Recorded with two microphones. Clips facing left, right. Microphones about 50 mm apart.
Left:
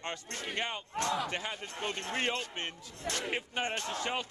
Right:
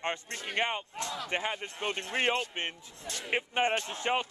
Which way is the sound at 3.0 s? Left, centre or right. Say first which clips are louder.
Left 5 dB; left.